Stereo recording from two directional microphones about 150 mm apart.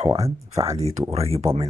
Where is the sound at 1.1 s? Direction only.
40° right (ahead or behind).